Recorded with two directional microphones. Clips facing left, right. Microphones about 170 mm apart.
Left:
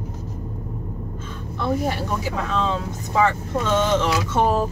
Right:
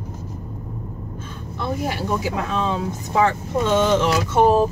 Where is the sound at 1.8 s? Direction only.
10° right (ahead or behind).